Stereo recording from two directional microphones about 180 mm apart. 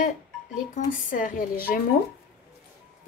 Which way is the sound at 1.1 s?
50° left (ahead or behind).